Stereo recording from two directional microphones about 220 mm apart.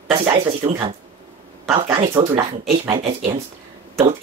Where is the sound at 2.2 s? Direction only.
15° right (ahead or behind).